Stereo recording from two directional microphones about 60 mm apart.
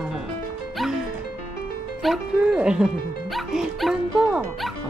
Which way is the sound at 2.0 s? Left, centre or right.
Centre.